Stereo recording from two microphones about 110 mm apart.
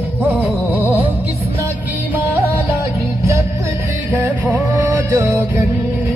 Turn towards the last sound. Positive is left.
turn(degrees=-30)  # may be behind; listen again after turning